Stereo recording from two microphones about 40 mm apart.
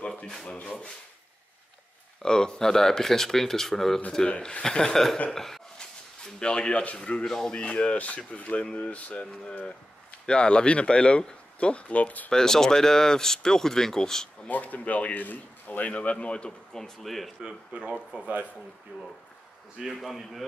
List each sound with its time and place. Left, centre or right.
2.2 s speech: centre
4.3 s speech: left; by 5.6 s centre
5.8 s a sound: left
7.2 s speech: centre
7.5 s speech: left
12.3 s speech: centre
14.5 s speech: left
17.0 s a man's voice: centre
17.4 s speech: right
19.8 s a man's voice: centre